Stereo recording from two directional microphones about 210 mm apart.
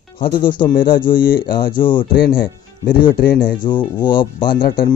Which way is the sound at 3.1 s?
45° left (ahead or behind).